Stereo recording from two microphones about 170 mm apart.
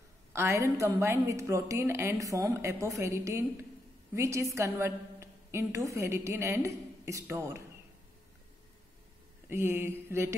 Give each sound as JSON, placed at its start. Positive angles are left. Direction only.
{"t": 0.3, "sound": "a woman's voice", "side_deg": -15}
{"t": 9.5, "sound": "a woman's voice", "side_deg": -15}